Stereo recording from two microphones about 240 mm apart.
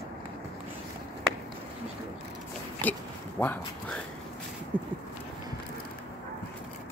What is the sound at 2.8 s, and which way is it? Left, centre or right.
Speech, centre.